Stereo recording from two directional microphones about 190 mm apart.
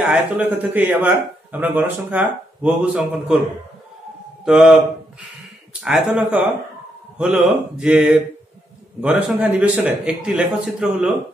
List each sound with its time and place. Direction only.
0.1 s a man's voice: 10° right (ahead or behind)
4.5 s a man's voice: centre (ahead or behind)